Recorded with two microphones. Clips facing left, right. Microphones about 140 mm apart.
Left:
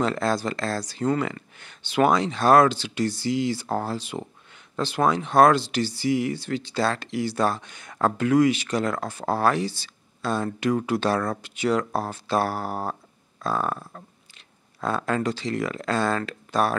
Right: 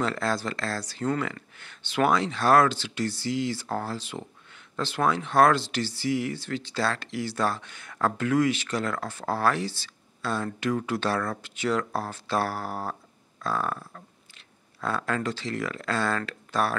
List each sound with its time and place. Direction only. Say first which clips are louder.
0.0 s speech: left 4 dB; 20° left (ahead or behind)